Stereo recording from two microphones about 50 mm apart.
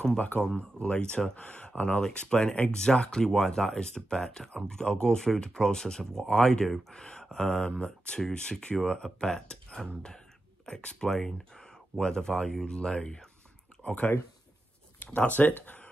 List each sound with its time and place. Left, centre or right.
0.3 s speech: left
13.8 s speech: left
15.1 s speech: left